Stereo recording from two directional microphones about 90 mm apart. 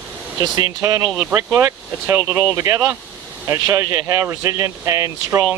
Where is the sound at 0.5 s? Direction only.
45° right (ahead or behind).